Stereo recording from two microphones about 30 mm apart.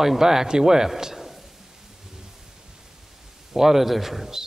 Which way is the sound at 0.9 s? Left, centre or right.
Centre.